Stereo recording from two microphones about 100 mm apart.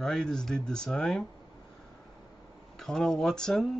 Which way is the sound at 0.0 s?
5° left (ahead or behind).